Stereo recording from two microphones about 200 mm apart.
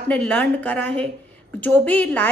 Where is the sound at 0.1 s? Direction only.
10° left (ahead or behind).